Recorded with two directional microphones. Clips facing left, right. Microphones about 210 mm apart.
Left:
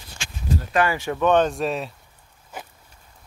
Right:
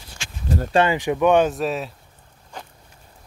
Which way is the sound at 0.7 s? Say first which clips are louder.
Right 4 dB; 20° right (ahead or behind).